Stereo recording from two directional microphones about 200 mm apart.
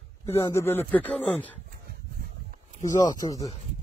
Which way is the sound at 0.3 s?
15° left (ahead or behind).